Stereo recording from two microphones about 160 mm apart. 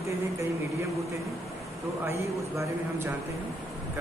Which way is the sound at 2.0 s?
15° right (ahead or behind).